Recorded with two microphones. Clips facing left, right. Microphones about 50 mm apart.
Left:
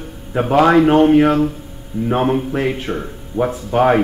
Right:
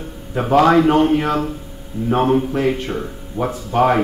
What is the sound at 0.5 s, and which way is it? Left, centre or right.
Speech, centre.